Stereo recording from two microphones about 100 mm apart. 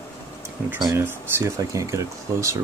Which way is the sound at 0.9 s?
30° right (ahead or behind).